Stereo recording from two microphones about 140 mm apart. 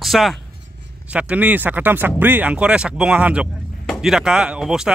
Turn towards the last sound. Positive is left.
turn(degrees=-5)  # may be behind; listen again after turning